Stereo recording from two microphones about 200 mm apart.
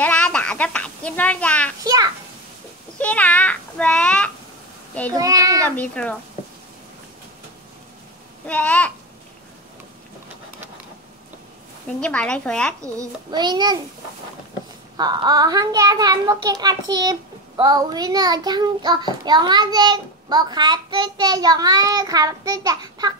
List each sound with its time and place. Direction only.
0.0 s a sound: 5° left (ahead or behind)
3.0 s a sound: 5° left (ahead or behind)
5.1 s a child's voice: 15° right (ahead or behind)
5.8 s a child's voice: 5° left (ahead or behind)
8.5 s a child's voice: 5° left (ahead or behind)
12.0 s speech: 5° left (ahead or behind)
12.8 s a child's voice: 20° right (ahead or behind)
15.0 s a child's voice: 20° right (ahead or behind)